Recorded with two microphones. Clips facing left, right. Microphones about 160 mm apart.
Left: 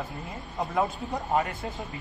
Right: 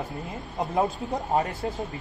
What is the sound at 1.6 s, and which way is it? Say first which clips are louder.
Speech: right 5 dB; 35° right (ahead or behind).